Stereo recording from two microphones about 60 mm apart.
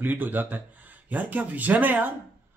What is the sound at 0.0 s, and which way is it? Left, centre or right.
Speech, right.